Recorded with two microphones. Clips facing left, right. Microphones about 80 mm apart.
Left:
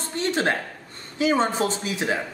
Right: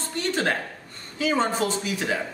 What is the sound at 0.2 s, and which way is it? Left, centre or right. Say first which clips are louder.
Speech: left 2 dB; left.